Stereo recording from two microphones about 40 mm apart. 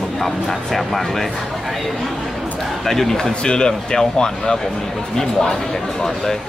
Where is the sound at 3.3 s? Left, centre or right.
Left.